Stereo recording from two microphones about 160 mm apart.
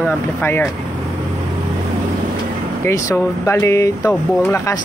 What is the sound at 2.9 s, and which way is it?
Speech, 15° left (ahead or behind).